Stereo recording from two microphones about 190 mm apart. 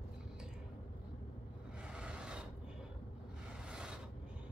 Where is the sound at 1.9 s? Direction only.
5° right (ahead or behind).